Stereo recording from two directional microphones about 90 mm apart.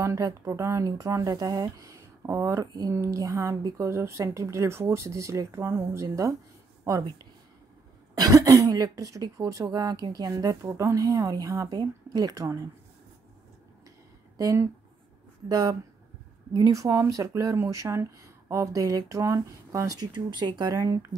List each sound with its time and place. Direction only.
0.0 s speech: 35° right (ahead or behind)
6.8 s a sound: 40° right (ahead or behind)
8.1 s speech: 45° right (ahead or behind)
10.3 s speech: 40° right (ahead or behind)
14.3 s speech: 40° right (ahead or behind)
20.1 s speech: 60° right (ahead or behind); by 21.2 s 35° right (ahead or behind)